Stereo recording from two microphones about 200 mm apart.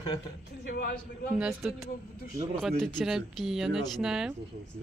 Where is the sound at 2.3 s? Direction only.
20° right (ahead or behind).